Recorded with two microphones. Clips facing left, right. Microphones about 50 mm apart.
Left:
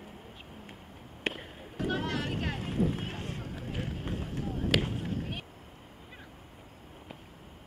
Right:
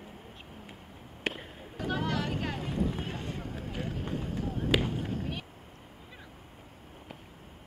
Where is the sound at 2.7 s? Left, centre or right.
Centre.